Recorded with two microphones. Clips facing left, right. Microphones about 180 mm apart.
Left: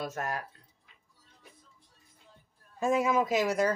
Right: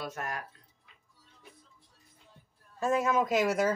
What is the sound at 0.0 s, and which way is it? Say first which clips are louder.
Speech: left 3 dB; 40° left (ahead or behind).